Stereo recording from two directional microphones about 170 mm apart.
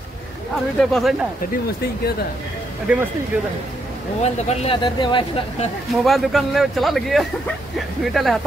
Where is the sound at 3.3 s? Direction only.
10° right (ahead or behind).